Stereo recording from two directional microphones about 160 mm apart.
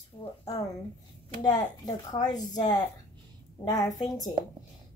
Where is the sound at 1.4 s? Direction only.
25° left (ahead or behind).